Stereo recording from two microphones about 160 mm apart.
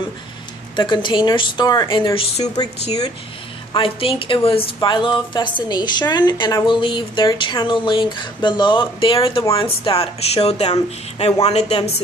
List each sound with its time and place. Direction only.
0.7 s a woman's voice: 30° left (ahead or behind)
2.1 s speech: 40° left (ahead or behind)
3.7 s a woman's voice: 35° left (ahead or behind)